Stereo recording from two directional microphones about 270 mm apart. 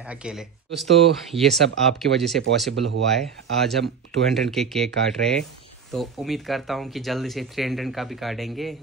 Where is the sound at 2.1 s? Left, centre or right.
Right.